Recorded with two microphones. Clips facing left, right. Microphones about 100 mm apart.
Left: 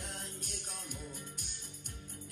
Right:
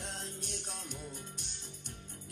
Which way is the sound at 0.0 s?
20° right (ahead or behind).